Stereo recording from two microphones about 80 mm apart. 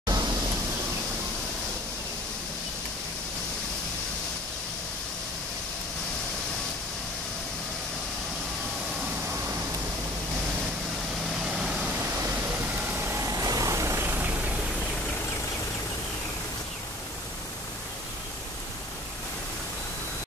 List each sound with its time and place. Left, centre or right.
0.0 s pink noise: right
11.2 s vehicle: centre
12.0 s vehicle: right
13.3 s vehicle: right